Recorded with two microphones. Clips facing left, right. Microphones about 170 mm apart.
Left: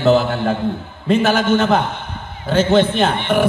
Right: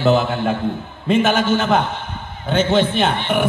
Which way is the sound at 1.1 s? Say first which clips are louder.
Left 1 dB; centre (ahead or behind).